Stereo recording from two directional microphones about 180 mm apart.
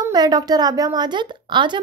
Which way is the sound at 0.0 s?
20° right (ahead or behind).